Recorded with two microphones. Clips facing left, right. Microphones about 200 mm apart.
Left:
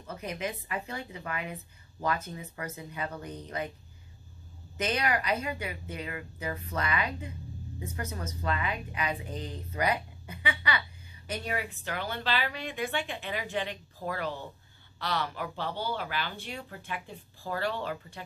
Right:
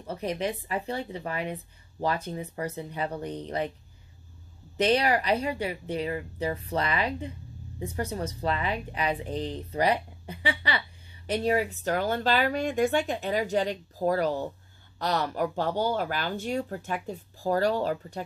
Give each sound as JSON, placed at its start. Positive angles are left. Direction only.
{"t": 0.0, "sound": "speech", "side_deg": -35}
{"t": 4.7, "sound": "speech", "side_deg": -30}